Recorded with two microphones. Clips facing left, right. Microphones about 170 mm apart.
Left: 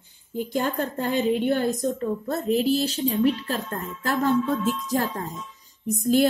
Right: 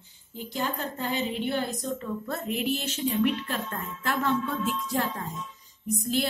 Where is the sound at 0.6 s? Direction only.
50° left (ahead or behind).